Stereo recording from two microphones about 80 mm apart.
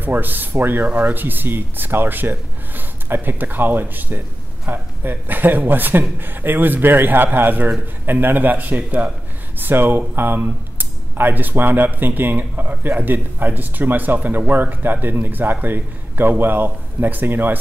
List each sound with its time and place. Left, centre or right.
0.0 s speech: right